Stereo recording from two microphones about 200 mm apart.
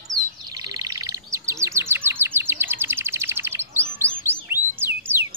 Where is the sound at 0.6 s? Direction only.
20° right (ahead or behind).